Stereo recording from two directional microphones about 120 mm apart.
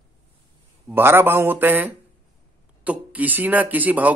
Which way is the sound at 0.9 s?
20° right (ahead or behind).